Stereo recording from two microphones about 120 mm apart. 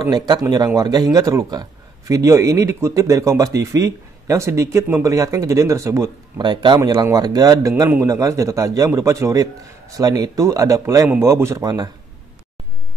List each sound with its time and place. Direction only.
0.0 s a man's voice: 35° right (ahead or behind)